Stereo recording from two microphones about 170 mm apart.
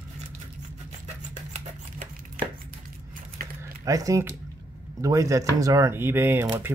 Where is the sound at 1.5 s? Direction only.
55° right (ahead or behind).